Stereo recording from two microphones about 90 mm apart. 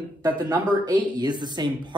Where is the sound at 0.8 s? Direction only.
55° right (ahead or behind).